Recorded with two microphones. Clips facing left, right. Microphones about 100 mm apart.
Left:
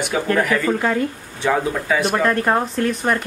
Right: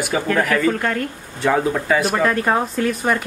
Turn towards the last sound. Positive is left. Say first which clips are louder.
# even
turn(degrees=-5)  # may be behind; listen again after turning